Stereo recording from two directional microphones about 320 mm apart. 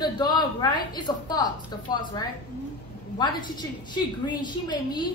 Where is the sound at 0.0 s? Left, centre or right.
Centre.